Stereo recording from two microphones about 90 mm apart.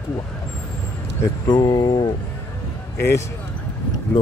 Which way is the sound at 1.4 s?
50° left (ahead or behind).